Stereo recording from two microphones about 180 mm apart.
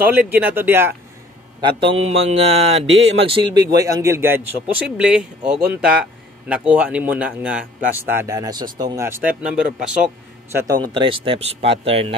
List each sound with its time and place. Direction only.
0.0 s a man's voice: 10° right (ahead or behind)
1.6 s a man's voice: 30° right (ahead or behind); by 10.6 s 5° right (ahead or behind)
10.7 s a man's voice: 25° right (ahead or behind)